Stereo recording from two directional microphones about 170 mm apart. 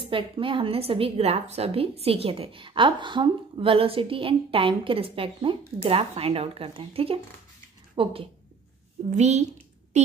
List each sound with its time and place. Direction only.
0.0 s a woman's voice: 30° right (ahead or behind)